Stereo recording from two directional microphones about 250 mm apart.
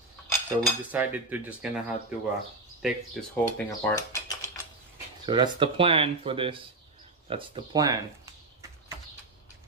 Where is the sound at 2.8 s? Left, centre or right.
Centre.